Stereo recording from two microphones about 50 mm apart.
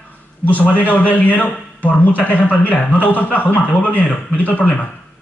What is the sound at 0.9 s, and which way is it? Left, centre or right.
A man's voice, left.